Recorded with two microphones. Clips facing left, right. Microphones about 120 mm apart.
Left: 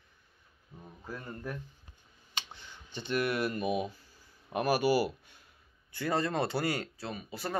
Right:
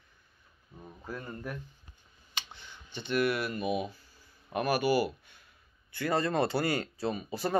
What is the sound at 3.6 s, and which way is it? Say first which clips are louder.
Speech: even; 35° left (ahead or behind).